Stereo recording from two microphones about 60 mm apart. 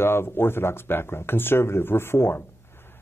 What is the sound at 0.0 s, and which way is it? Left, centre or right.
Speech, left.